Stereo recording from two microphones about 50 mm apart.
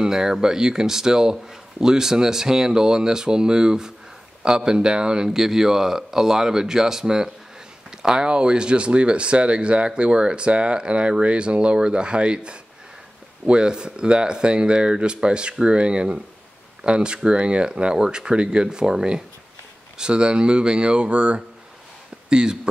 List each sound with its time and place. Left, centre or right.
0.0 s speech: centre